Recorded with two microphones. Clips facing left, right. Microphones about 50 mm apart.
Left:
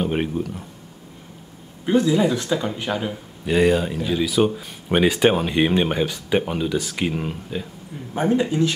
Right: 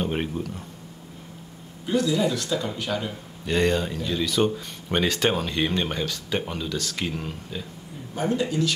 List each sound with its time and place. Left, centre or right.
0.0 s speech: centre
1.9 s speech: left
3.1 s speech: centre